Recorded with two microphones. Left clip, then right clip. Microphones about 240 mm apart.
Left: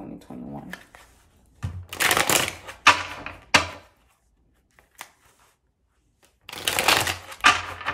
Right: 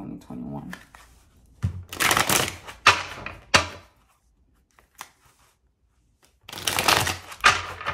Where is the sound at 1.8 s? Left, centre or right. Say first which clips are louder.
Even; centre.